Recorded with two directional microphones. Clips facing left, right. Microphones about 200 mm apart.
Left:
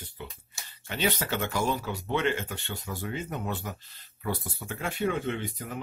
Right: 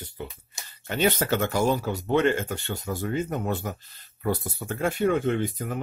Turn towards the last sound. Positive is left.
turn(degrees=-45)  # may be behind; listen again after turning